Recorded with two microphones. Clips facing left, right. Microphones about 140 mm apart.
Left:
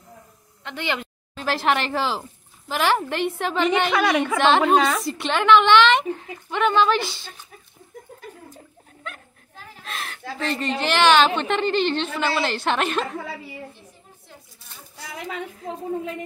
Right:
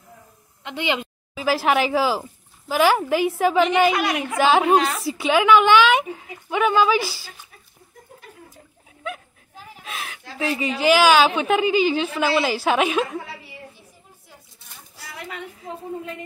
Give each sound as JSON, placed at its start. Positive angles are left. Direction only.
{"t": 0.7, "sound": "speech", "side_deg": -15}
{"t": 1.3, "sound": "a woman's voice", "side_deg": -5}
{"t": 9.0, "sound": "speech", "side_deg": -5}